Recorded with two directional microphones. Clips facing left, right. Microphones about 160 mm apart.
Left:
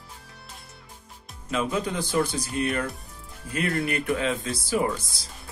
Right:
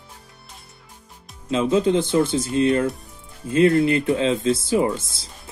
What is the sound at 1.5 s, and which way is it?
Speech, 25° right (ahead or behind).